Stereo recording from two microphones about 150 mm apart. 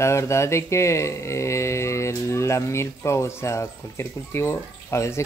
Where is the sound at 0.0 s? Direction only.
20° left (ahead or behind).